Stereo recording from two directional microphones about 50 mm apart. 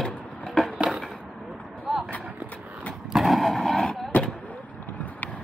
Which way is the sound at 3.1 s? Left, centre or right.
Centre.